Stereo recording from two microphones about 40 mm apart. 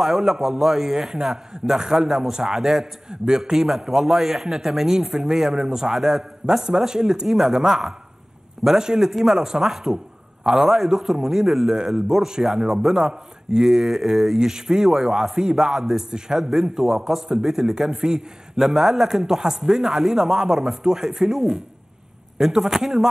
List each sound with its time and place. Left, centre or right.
0.0 s a man's voice: centre
5.9 s speech: centre
6.4 s a man's voice: centre
13.1 s a man's voice: centre